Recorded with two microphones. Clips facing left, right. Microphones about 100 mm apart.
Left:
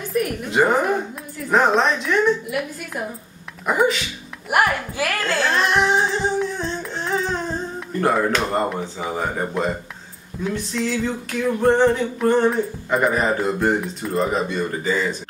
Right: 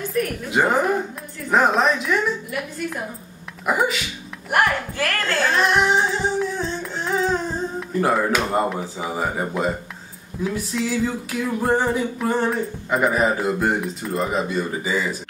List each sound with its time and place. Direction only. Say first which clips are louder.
0.5 s music: left 1 dB; centre (ahead or behind)
4.5 s speech: left 1 dB; 10° left (ahead or behind)
7.9 s music: left 1 dB; centre (ahead or behind)